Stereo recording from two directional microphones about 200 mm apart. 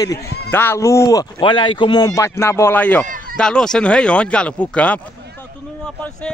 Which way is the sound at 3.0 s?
45° right (ahead or behind).